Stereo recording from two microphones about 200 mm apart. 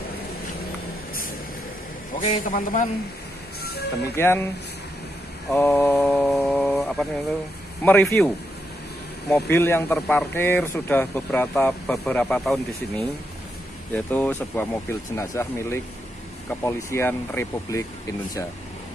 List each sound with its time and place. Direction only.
2.1 s speech: 40° left (ahead or behind)
4.2 s speech: 10° left (ahead or behind)
5.5 s a sound: 5° left (ahead or behind)
7.8 s speech: 10° left (ahead or behind)
9.3 s speech: 10° left (ahead or behind)